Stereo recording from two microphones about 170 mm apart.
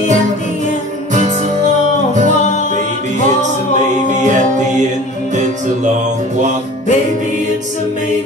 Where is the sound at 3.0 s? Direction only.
45° right (ahead or behind).